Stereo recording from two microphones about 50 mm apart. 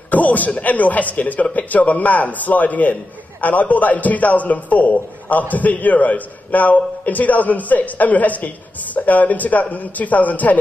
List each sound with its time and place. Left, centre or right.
0.1 s speech: left